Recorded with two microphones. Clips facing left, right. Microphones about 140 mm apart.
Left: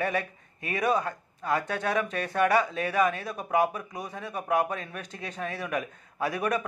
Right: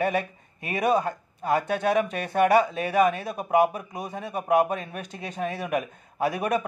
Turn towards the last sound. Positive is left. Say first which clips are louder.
# right 3 dB
turn(degrees=-20)  # may be behind; listen again after turning